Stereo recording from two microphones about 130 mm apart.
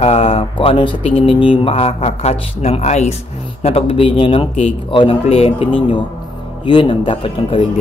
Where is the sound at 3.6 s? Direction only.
45° left (ahead or behind).